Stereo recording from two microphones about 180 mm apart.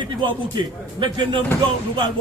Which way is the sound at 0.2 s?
25° right (ahead or behind).